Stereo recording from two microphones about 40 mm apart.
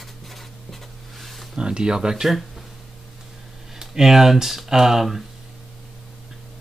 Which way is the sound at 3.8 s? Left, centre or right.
Centre.